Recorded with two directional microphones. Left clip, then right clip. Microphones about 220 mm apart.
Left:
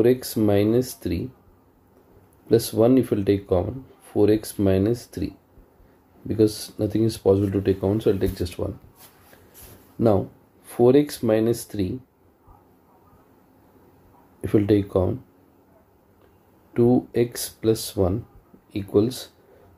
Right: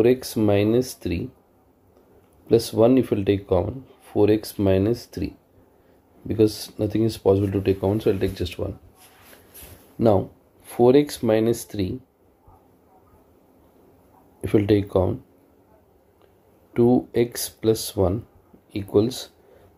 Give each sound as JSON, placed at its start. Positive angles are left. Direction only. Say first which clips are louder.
{"t": 0.0, "sound": "speech", "louder": "right 1 dB", "side_deg": -15}
{"t": 2.4, "sound": "speech", "louder": "right 1 dB", "side_deg": -15}
{"t": 9.9, "sound": "speech", "louder": "right 1 dB", "side_deg": -20}
{"t": 14.4, "sound": "speech", "louder": "even", "side_deg": -20}
{"t": 16.7, "sound": "speech", "louder": "right 1 dB", "side_deg": -20}